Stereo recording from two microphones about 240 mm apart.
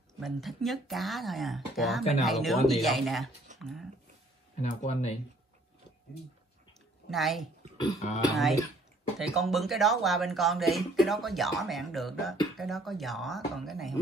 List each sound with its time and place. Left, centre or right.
0.2 s speech: centre
3.5 s a sound: centre
4.6 s speech: left
7.1 s speech: centre
7.7 s speech: centre
9.2 s speech: centre